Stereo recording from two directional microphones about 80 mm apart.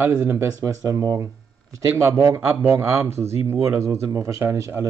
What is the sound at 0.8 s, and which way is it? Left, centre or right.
Speech, right.